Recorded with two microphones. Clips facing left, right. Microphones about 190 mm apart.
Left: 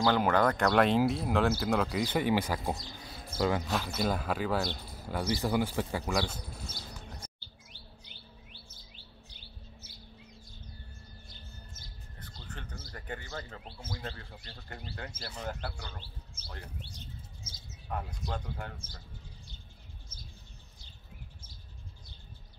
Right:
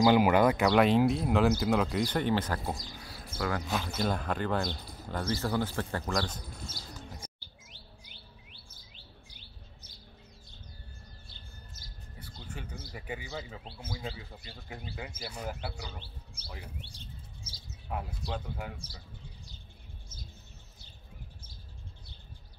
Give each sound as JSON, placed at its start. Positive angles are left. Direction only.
{"t": 0.0, "sound": "speech", "side_deg": -15}
{"t": 3.1, "sound": "bird", "side_deg": 20}
{"t": 3.6, "sound": "speech", "side_deg": 0}
{"t": 12.2, "sound": "speech", "side_deg": -10}
{"t": 16.9, "sound": "bird", "side_deg": -30}
{"t": 17.8, "sound": "speech", "side_deg": -5}